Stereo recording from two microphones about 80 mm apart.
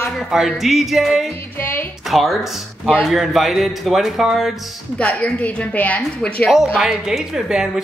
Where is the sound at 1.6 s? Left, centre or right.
Left.